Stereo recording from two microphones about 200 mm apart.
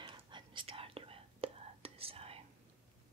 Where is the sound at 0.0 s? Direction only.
25° right (ahead or behind).